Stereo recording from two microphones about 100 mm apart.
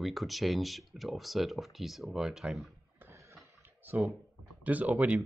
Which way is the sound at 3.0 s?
30° right (ahead or behind).